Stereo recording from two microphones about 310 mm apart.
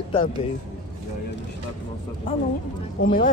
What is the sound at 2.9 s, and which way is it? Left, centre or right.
Speech, left.